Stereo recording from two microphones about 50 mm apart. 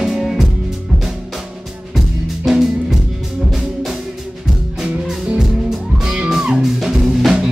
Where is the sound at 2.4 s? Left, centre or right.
Centre.